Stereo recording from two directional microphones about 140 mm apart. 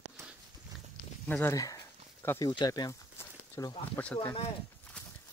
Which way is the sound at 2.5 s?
30° left (ahead or behind).